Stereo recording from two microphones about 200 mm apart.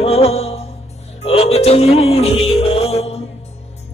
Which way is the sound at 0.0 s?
30° left (ahead or behind).